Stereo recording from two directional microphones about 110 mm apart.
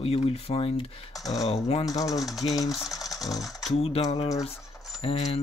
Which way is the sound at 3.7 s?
75° left (ahead or behind).